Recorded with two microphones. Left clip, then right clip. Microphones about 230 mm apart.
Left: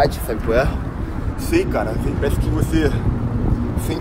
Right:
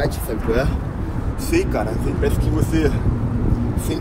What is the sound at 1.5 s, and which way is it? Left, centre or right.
Speech, centre.